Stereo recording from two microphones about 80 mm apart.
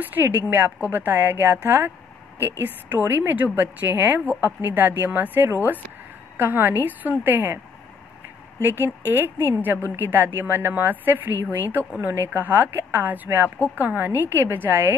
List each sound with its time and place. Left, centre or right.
0.0 s speech: right
2.9 s speech: right